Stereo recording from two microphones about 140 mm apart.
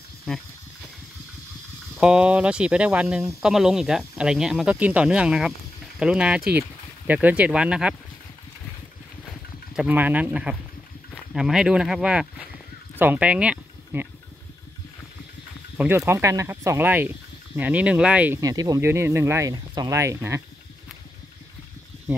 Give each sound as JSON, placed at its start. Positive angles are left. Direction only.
{"t": 0.3, "sound": "speech", "side_deg": 5}
{"t": 2.0, "sound": "speech", "side_deg": -5}
{"t": 9.8, "sound": "speech", "side_deg": -10}
{"t": 15.8, "sound": "speech", "side_deg": -15}
{"t": 18.4, "sound": "speech", "side_deg": -25}
{"t": 19.5, "sound": "speech", "side_deg": -30}